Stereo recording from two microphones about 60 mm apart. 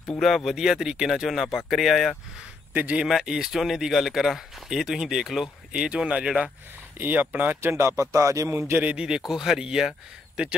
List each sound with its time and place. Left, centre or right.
0.1 s speech: centre
2.7 s speech: right
3.1 s speech: centre
7.0 s speech: right
7.6 s speech: right
8.0 s speech: right
8.5 s speech: right
8.9 s speech: centre